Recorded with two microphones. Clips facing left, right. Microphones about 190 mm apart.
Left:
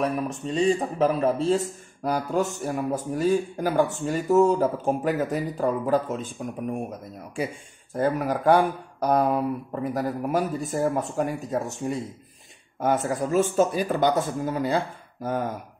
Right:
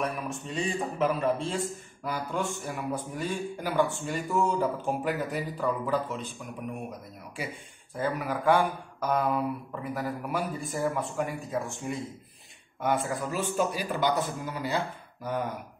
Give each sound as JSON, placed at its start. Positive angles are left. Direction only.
{"t": 0.3, "sound": "speech", "side_deg": 35}
{"t": 7.9, "sound": "speech", "side_deg": 45}